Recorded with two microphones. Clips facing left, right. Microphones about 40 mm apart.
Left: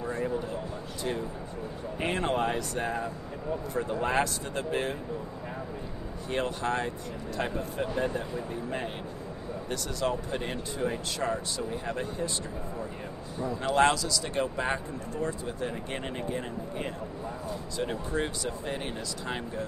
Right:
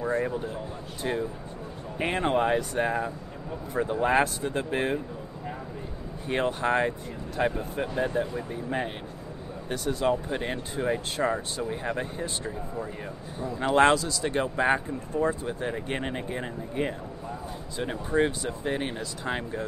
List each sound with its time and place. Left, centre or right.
1.0 s speech: right
3.8 s speech: centre
6.2 s speech: right
7.3 s speech: centre